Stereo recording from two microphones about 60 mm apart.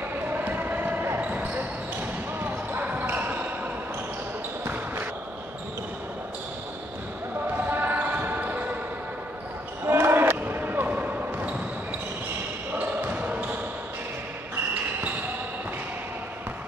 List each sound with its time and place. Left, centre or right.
0.3 s a sound: right
1.2 s basketball bounce: right
7.5 s basketball bounce: right
9.8 s basketball bounce: right
12.7 s basketball bounce: right